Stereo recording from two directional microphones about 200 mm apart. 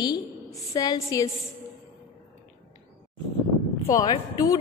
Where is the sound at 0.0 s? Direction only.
20° left (ahead or behind).